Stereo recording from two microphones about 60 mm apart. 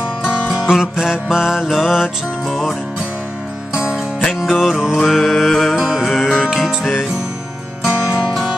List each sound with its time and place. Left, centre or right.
0.2 s music: left
0.5 s music: centre
3.7 s music: centre
4.4 s mantra: centre
6.4 s music: centre